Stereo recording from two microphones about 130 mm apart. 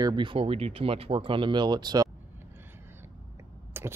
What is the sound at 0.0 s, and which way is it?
Speech, 35° right (ahead or behind).